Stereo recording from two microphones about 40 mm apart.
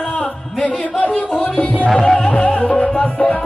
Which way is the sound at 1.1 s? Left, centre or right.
Left.